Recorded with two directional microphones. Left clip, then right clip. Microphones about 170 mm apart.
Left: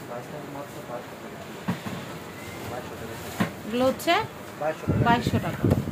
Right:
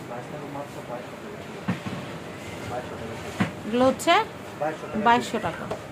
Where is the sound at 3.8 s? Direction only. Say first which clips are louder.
Right 3 dB; 20° right (ahead or behind).